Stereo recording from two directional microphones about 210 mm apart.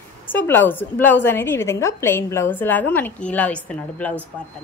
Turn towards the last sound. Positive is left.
turn(degrees=5)  # may be behind; listen again after turning